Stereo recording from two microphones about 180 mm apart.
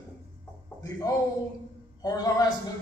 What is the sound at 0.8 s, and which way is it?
A man's voice, 20° left (ahead or behind).